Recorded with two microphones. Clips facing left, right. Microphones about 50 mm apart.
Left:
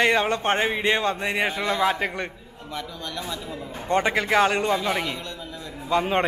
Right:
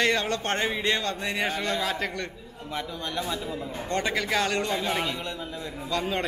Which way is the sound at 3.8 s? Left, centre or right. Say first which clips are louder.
Left 6 dB; left.